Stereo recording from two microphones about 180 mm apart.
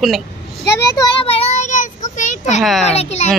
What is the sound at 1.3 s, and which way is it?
Child singing, 40° left (ahead or behind).